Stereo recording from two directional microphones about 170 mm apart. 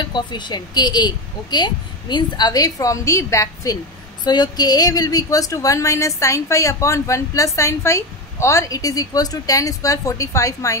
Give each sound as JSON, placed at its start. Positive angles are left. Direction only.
{"t": 0.1, "sound": "a woman's voice", "side_deg": 25}